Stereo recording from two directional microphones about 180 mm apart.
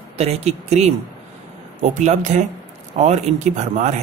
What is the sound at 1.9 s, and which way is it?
Speech, 40° right (ahead or behind).